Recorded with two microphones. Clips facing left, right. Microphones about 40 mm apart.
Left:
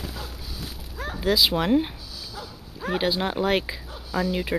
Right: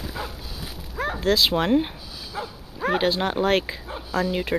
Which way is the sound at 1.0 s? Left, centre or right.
Right.